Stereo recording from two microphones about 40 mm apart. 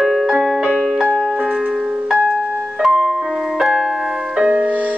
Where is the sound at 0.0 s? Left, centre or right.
Centre.